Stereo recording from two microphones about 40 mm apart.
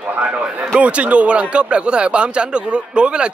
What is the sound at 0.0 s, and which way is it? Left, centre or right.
A man's voice, right.